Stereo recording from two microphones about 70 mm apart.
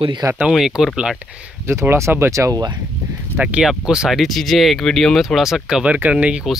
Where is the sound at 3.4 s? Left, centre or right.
Right.